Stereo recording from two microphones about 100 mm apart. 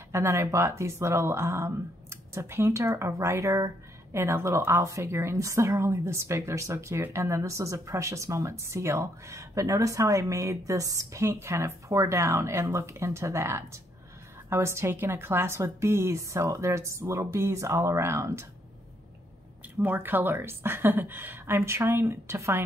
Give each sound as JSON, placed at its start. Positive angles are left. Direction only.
{"t": 0.1, "sound": "speech", "side_deg": -30}
{"t": 19.8, "sound": "speech", "side_deg": -20}